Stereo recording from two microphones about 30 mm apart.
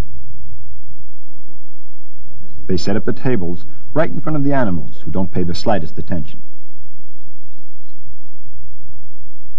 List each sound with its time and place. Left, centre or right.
2.4 s speech: left